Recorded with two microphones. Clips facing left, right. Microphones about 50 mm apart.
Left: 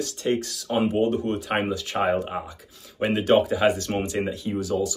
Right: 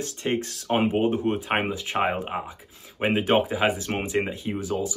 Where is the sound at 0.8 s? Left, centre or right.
Right.